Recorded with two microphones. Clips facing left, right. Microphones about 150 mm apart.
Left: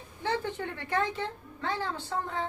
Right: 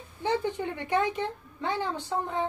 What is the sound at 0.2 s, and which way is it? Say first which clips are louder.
A woman's voice: right 3 dB; 15° right (ahead or behind).